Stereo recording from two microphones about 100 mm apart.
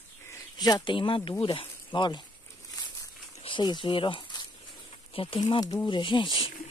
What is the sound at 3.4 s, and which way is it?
Speech, 50° left (ahead or behind).